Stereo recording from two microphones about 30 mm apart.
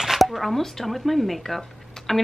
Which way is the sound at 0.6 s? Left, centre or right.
Centre.